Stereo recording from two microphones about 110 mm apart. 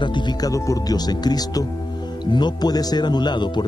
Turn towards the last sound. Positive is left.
turn(degrees=45)  # may be behind; listen again after turning